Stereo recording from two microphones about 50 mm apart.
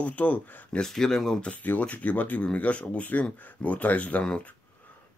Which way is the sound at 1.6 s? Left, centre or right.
Left.